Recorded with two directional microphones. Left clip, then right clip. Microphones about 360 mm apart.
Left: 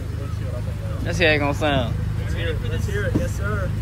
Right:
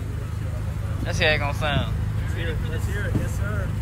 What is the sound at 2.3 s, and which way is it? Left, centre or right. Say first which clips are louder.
Vehicle: left 4 dB; centre.